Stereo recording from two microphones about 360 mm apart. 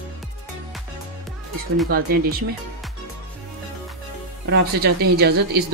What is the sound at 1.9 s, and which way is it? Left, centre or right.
Speech, right.